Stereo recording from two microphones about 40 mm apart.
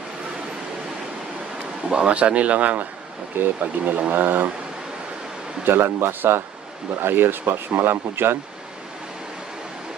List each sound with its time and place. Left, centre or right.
1.9 s speech: right
3.3 s speech: right
5.7 s speech: right